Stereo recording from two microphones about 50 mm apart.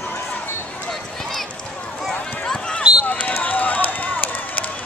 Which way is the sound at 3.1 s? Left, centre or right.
Left.